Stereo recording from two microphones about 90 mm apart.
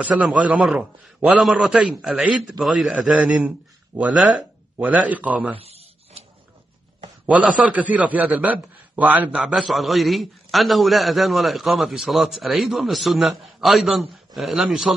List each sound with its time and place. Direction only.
0.4 s a man's voice: 10° right (ahead or behind)
5.6 s a sound: 90° right
7.2 s a man's voice: 15° right (ahead or behind)
9.4 s a man's voice: 5° right (ahead or behind)